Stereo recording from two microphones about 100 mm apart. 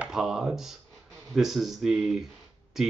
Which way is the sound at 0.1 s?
5° right (ahead or behind).